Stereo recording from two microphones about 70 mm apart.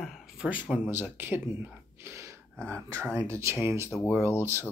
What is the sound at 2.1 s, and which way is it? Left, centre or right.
Gasp, right.